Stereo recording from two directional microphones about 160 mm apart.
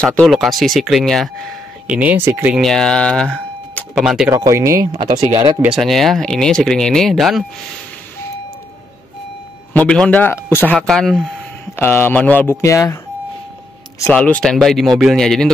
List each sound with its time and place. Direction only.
0.0 s speech: 5° left (ahead or behind); by 2.6 s 10° right (ahead or behind)
2.6 s speech: 5° left (ahead or behind)
4.3 s speech: 20° right (ahead or behind)
5.6 s speech: centre (ahead or behind)
9.8 s speech: 5° left (ahead or behind)
11.7 s speech: 15° left (ahead or behind)
14.1 s speech: 5° left (ahead or behind)